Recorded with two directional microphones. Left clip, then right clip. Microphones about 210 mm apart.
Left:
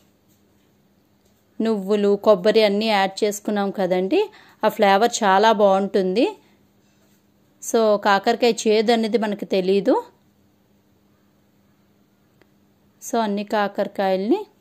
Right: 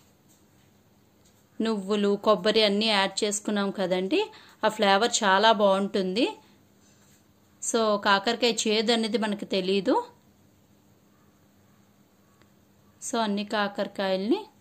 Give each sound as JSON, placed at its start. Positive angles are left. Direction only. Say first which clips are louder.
{"t": 1.6, "sound": "a woman's voice", "louder": "left 7 dB", "side_deg": 25}
{"t": 7.6, "sound": "a woman's voice", "louder": "left 6 dB", "side_deg": 30}
{"t": 13.0, "sound": "a woman's voice", "louder": "left 6 dB", "side_deg": 30}